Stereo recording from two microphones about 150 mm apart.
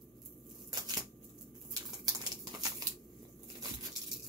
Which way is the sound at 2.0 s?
25° right (ahead or behind).